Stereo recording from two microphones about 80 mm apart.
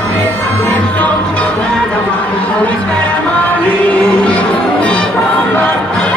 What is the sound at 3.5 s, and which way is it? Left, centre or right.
Music, centre.